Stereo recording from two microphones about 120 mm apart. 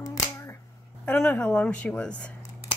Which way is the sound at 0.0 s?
25° left (ahead or behind).